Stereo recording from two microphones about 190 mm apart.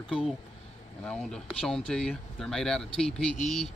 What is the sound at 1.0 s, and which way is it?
Speech, 5° left (ahead or behind).